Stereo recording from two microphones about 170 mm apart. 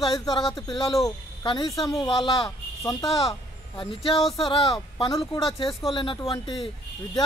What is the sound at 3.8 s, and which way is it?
A woman's voice, 30° left (ahead or behind).